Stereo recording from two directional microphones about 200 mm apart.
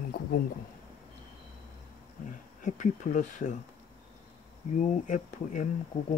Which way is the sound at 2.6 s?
40° left (ahead or behind).